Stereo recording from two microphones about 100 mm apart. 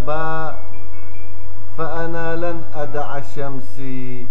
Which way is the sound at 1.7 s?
5° right (ahead or behind).